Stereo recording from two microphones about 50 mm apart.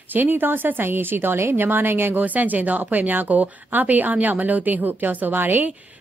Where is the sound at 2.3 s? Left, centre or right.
Right.